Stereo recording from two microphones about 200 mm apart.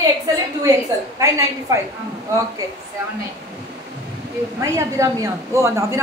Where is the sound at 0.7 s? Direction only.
15° right (ahead or behind).